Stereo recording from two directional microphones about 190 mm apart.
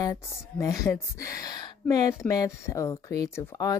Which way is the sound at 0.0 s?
20° left (ahead or behind).